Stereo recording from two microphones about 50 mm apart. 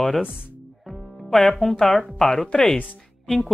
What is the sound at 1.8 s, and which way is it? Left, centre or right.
Speech, centre.